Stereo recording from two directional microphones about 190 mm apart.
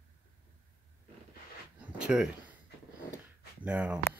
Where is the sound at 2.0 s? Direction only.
5° right (ahead or behind).